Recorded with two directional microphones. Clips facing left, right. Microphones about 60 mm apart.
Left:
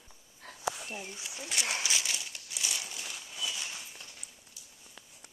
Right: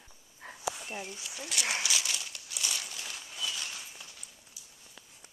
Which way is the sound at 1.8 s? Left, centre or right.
Left.